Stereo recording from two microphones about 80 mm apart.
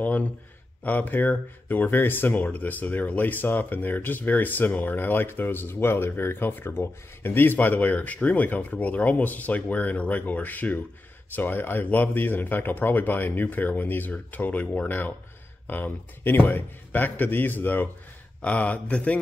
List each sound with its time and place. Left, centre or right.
0.0 s speech: centre